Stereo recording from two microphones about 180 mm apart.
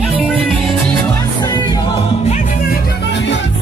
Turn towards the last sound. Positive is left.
turn(degrees=65)  # may be behind; listen again after turning